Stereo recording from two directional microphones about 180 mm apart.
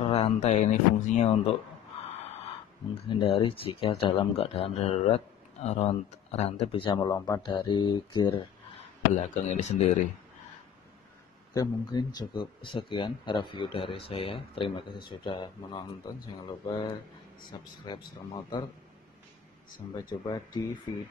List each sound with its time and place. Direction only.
0.0 s speech: 35° left (ahead or behind)
2.9 s speech: 30° left (ahead or behind)
9.5 s speech: 40° left (ahead or behind)
11.5 s speech: 20° left (ahead or behind)
20.1 s speech: 25° left (ahead or behind)